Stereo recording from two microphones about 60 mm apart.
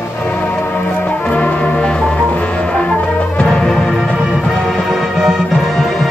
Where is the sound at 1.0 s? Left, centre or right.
Centre.